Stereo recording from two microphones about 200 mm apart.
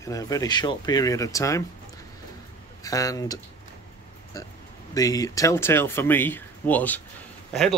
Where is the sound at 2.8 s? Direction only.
15° left (ahead or behind).